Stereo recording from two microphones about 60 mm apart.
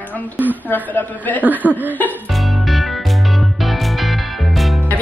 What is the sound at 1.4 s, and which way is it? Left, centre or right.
Speech, right.